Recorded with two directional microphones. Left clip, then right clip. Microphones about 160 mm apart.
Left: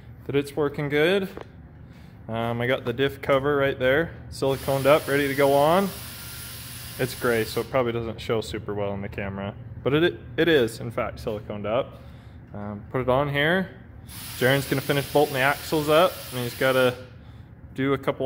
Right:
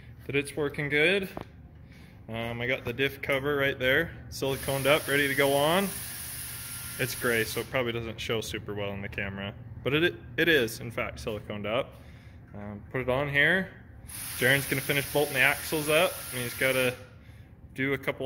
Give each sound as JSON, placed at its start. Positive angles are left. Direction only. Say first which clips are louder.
{"t": 0.3, "sound": "speech", "louder": "left 5 dB", "side_deg": 10}
{"t": 3.4, "sound": "speech", "louder": "left 5 dB", "side_deg": 10}
{"t": 7.0, "sound": "speech", "louder": "left 4 dB", "side_deg": 5}
{"t": 12.5, "sound": "speech", "louder": "left 5 dB", "side_deg": 10}